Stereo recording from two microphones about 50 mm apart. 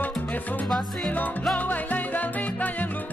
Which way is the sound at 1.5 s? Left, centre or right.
Left.